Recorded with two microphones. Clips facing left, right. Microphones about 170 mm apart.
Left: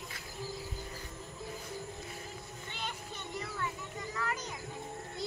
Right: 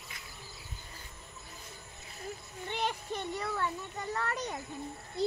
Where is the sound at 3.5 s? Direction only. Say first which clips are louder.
Right 4 dB; 65° right (ahead or behind).